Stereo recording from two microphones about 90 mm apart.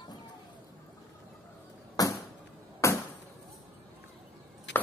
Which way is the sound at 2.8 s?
35° left (ahead or behind).